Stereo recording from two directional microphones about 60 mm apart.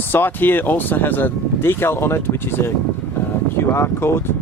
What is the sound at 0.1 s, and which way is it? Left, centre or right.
Speech, left.